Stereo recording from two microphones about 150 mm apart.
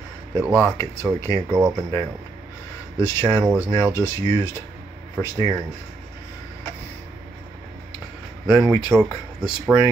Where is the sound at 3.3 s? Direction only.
15° right (ahead or behind).